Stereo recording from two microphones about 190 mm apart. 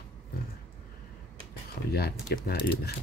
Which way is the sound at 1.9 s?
55° left (ahead or behind).